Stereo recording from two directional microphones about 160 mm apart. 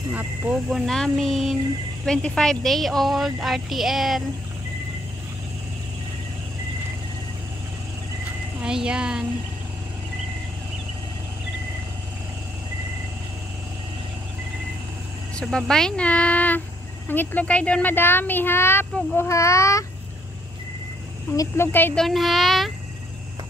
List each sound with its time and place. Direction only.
0.1 s a woman's voice: 10° right (ahead or behind)
8.6 s a woman's voice: 5° right (ahead or behind)
15.3 s speech: centre (ahead or behind); by 19.8 s 20° left (ahead or behind)
21.4 s speech: 15° left (ahead or behind)
22.0 s a woman's voice: centre (ahead or behind)